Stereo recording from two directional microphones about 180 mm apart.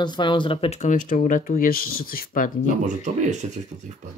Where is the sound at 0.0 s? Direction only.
25° left (ahead or behind); by 2.7 s 50° left (ahead or behind).